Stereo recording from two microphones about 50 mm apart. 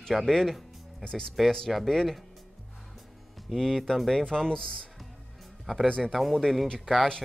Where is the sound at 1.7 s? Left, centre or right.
Centre.